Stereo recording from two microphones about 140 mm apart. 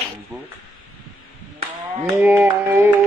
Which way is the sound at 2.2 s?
15° right (ahead or behind).